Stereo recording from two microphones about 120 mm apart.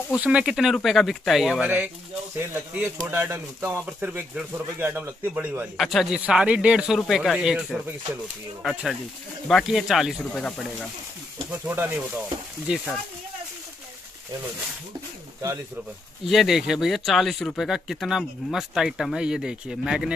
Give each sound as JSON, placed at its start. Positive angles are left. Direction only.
{"t": 0.1, "sound": "speech", "side_deg": -10}
{"t": 5.8, "sound": "speech", "side_deg": 0}
{"t": 11.6, "sound": "speech", "side_deg": -15}
{"t": 16.3, "sound": "speech", "side_deg": 0}